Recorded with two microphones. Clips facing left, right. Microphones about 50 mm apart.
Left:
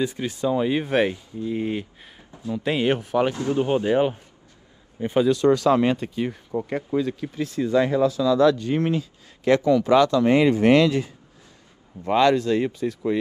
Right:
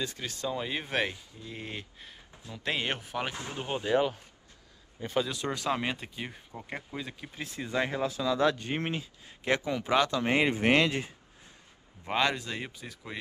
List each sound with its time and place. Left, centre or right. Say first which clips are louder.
0.0 s speech: left 10 dB; centre
3.5 s speech: left 6 dB; centre
5.3 s speech: left 16 dB; centre
5.7 s speech: left 12 dB; centre
6.5 s speech: left 17 dB; left
7.0 s speech: left 14 dB; centre
7.4 s speech: left 10 dB; right
12.1 s speech: left 11 dB; centre